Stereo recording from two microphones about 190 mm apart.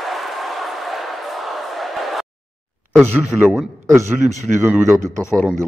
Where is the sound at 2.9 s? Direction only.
10° right (ahead or behind).